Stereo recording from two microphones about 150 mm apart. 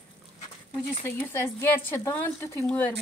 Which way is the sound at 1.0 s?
15° left (ahead or behind).